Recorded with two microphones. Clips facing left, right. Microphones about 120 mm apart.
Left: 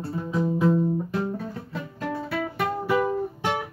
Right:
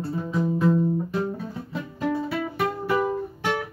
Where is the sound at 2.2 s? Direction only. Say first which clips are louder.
Right 1 dB; 5° right (ahead or behind).